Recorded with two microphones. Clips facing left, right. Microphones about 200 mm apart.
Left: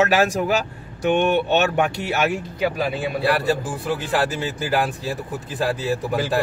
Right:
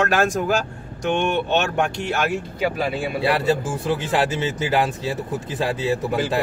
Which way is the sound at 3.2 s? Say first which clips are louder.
Right 1 dB; 20° right (ahead or behind).